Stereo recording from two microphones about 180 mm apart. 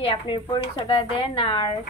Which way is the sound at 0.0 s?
30° left (ahead or behind).